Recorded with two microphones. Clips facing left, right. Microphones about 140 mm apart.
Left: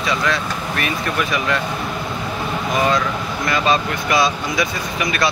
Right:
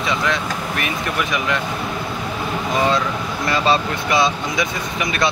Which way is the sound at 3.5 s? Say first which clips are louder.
Even; 30° right (ahead or behind).